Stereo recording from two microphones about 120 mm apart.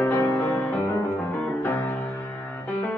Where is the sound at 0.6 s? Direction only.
15° left (ahead or behind).